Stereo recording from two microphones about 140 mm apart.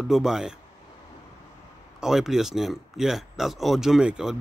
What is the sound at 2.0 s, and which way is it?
A man's voice, 5° right (ahead or behind).